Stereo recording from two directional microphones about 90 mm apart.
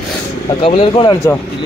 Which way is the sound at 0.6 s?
80° left.